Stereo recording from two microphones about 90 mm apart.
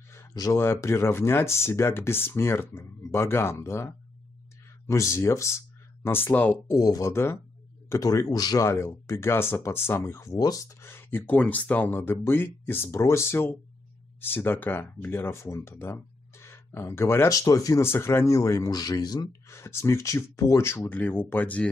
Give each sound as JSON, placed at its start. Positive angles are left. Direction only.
{"t": 0.1, "sound": "a sound", "side_deg": 35}
{"t": 0.6, "sound": "speech", "side_deg": 30}
{"t": 6.0, "sound": "speech", "side_deg": 25}
{"t": 6.7, "sound": "speech", "side_deg": 40}
{"t": 8.6, "sound": "speech", "side_deg": 30}
{"t": 17.3, "sound": "speech", "side_deg": 40}
{"t": 17.8, "sound": "speech", "side_deg": 25}
{"t": 19.4, "sound": "speech", "side_deg": 30}